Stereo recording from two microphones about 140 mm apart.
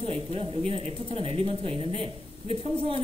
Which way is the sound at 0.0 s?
40° right (ahead or behind).